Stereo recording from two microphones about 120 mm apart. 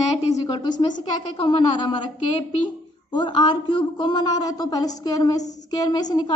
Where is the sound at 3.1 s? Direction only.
40° left (ahead or behind).